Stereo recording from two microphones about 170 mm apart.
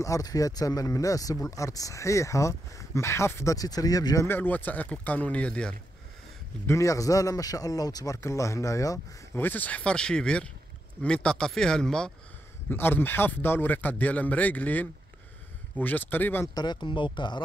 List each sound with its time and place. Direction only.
0.0 s speech: 20° left (ahead or behind)
6.7 s speech: 20° left (ahead or behind)
16.5 s speech: 25° left (ahead or behind)